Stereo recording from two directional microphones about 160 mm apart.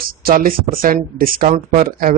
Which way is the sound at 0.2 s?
65° right (ahead or behind).